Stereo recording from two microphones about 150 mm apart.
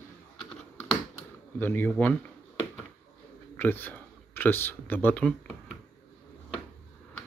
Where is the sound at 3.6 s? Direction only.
15° left (ahead or behind).